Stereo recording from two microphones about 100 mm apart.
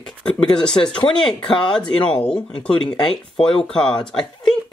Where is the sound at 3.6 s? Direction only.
10° left (ahead or behind).